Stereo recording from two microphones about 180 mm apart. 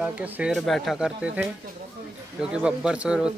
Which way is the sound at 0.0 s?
5° right (ahead or behind).